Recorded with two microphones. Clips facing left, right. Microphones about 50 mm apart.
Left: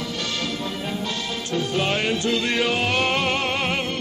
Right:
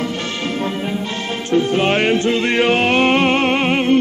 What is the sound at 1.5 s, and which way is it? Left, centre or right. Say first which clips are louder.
Music: right 8 dB; right.